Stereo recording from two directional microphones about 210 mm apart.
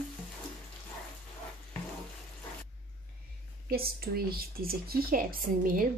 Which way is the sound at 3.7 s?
45° right (ahead or behind).